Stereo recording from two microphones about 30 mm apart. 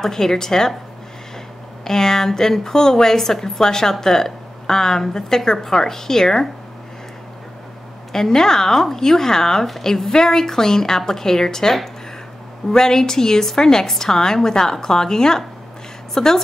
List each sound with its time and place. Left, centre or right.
0.0 s a woman's voice: centre
1.9 s a woman's voice: centre
8.1 s a woman's voice: centre
12.7 s a woman's voice: centre